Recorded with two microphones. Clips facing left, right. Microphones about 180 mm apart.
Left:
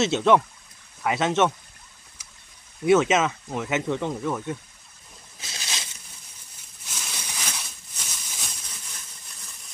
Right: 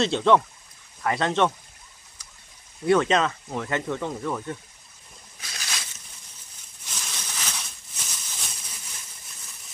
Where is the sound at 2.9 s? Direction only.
5° left (ahead or behind).